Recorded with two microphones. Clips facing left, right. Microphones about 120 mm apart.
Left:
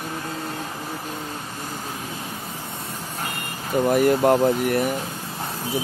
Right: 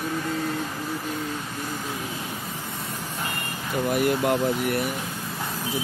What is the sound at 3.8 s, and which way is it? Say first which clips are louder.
Speech: left 5 dB; 40° left (ahead or behind).